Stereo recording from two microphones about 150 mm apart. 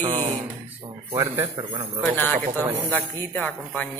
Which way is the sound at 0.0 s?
50° right (ahead or behind).